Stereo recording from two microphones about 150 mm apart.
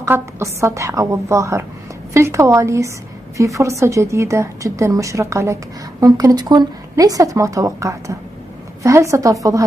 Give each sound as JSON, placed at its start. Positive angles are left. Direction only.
{"t": 0.0, "sound": "a woman's voice", "side_deg": -20}